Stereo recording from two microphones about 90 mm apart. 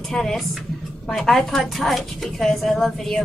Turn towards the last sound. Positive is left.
turn(degrees=5)  # may be behind; listen again after turning